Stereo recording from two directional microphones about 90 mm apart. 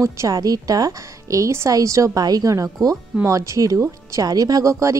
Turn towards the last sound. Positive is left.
turn(degrees=-35)  # may be behind; listen again after turning